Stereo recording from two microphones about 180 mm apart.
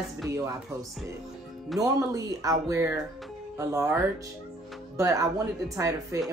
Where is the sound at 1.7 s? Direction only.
20° right (ahead or behind).